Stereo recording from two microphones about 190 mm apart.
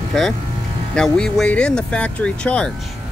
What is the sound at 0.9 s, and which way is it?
Speech, 5° left (ahead or behind).